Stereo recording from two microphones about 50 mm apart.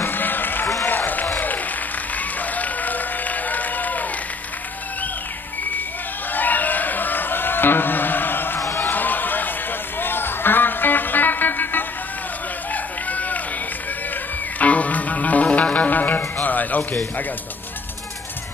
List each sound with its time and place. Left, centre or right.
0.0 s run: left
2.1 s applause: left
6.3 s a sound: left
8.7 s run: left
9.9 s music: left
12.7 s run: left
14.6 s music: left